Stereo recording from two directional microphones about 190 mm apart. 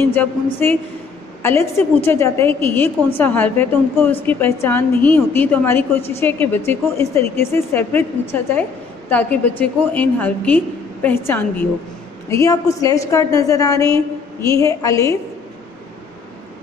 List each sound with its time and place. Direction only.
0.0 s a woman's voice: 10° left (ahead or behind)